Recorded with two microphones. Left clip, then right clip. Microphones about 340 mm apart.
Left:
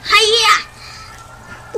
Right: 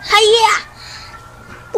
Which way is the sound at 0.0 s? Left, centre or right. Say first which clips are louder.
Right 1 dB; centre.